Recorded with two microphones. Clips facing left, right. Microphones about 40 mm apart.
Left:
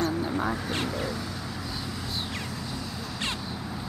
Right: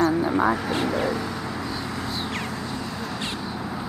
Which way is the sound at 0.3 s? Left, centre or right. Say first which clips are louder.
Right 7 dB; right.